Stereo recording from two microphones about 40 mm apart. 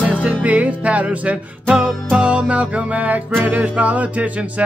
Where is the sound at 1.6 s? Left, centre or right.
Centre.